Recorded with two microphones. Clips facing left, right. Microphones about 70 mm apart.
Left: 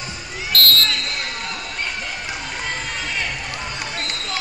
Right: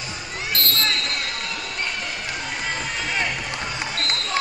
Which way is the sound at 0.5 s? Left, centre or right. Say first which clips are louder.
Left 6 dB; right.